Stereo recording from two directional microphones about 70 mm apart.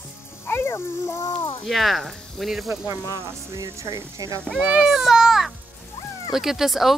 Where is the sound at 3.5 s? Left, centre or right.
Right.